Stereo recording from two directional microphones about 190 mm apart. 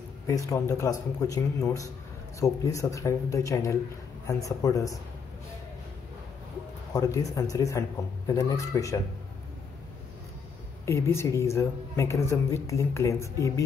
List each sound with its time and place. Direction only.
0.3 s a woman's voice: 15° left (ahead or behind)
6.9 s a woman's voice: 20° left (ahead or behind)
10.9 s a woman's voice: 15° left (ahead or behind)